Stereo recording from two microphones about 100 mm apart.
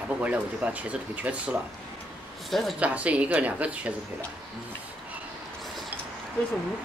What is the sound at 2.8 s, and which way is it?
Speech, 15° right (ahead or behind).